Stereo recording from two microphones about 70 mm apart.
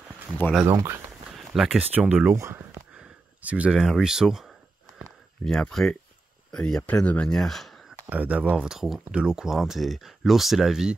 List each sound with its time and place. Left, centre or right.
0.7 s speech: right
1.3 s a sound: centre
1.8 s speech: right
2.9 s a sound: centre
3.7 s speech: centre
5.4 s speech: centre
7.3 s speech: centre
8.1 s speech: right